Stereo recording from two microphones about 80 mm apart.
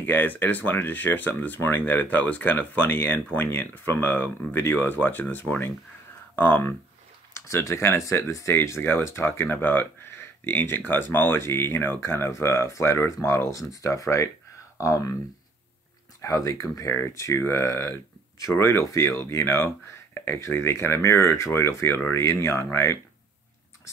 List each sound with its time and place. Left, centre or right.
0.0 s speech: left
7.3 s speech: left
13.7 s speech: left
16.2 s speech: left